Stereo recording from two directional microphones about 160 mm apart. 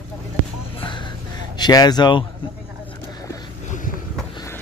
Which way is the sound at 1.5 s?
25° left (ahead or behind).